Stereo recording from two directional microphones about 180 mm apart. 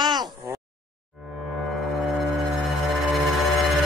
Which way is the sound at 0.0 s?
25° right (ahead or behind).